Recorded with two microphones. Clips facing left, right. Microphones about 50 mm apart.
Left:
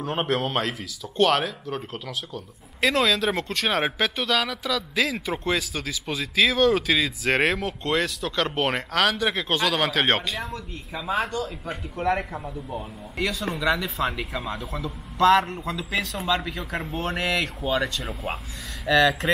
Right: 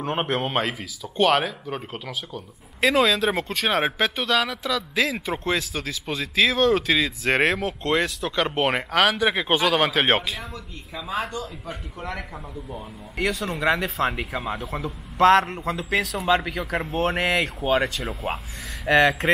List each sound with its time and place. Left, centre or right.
0.0 s speech: centre
12.0 s a man's voice: left
13.6 s speech: centre